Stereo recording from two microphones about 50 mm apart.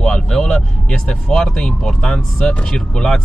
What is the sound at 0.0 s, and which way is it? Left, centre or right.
Vehicle, centre.